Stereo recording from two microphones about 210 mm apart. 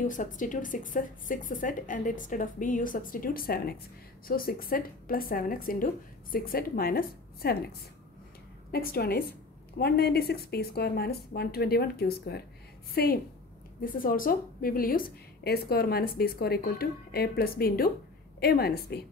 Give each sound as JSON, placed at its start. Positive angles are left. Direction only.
{"t": 0.0, "sound": "a woman's voice", "side_deg": 40}
{"t": 8.7, "sound": "a woman's voice", "side_deg": 45}